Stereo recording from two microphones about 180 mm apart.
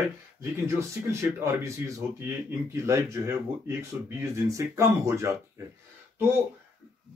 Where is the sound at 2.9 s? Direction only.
15° right (ahead or behind).